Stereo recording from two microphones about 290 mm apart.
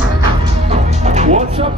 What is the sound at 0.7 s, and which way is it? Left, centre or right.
Music, right.